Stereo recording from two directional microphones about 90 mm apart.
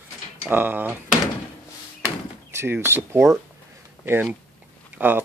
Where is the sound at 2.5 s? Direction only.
30° right (ahead or behind).